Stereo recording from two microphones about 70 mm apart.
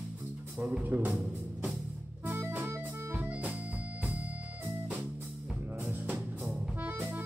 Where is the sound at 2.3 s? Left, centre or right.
Right.